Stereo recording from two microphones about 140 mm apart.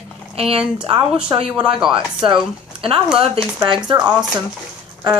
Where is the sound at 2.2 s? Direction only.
40° right (ahead or behind).